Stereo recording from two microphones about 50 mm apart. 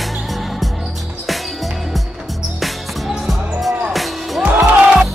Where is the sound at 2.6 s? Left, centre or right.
Centre.